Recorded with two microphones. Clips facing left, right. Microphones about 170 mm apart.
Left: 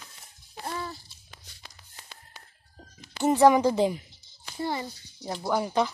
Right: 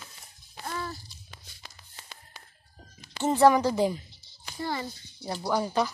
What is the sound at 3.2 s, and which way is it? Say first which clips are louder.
A woman's voice: left 1 dB; 15° left (ahead or behind).